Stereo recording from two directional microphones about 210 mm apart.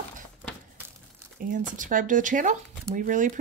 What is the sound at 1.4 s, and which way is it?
Speech, 40° right (ahead or behind).